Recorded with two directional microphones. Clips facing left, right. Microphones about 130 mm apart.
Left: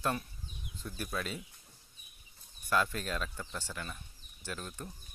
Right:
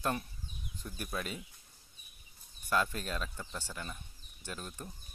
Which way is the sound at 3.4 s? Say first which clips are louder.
Left 1 dB; 15° right (ahead or behind).